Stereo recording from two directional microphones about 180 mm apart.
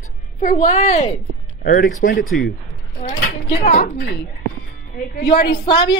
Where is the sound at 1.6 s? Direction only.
50° left (ahead or behind).